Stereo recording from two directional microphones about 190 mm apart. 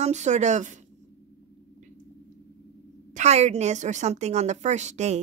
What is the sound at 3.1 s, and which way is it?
A woman's voice, 35° right (ahead or behind).